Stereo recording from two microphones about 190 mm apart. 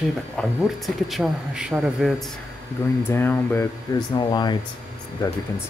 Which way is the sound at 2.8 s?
15° left (ahead or behind).